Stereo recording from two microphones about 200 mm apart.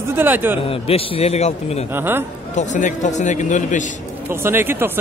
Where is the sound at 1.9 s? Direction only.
10° right (ahead or behind).